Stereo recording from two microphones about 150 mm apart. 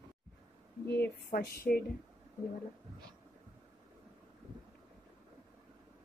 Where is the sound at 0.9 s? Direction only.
90° left.